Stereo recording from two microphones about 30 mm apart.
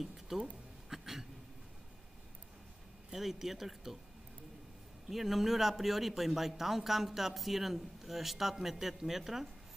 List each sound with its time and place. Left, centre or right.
0.3 s speech: centre
0.8 s a sound: centre
3.1 s speech: centre
5.1 s speech: centre